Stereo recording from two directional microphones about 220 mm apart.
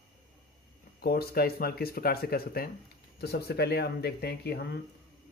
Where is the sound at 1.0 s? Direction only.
45° left (ahead or behind).